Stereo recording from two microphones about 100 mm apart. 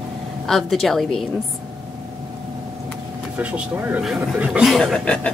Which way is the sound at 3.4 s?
15° right (ahead or behind).